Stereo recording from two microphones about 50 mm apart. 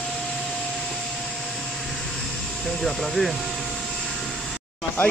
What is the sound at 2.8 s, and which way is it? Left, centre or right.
Speech, centre.